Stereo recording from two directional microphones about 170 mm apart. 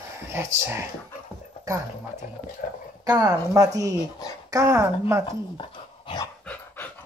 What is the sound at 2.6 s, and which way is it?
Speech, 60° left (ahead or behind).